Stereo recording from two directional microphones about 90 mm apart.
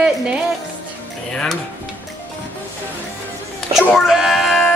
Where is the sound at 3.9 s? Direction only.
5° right (ahead or behind).